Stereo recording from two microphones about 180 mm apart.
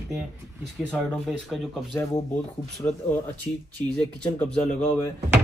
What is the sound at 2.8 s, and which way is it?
Speech, 15° left (ahead or behind).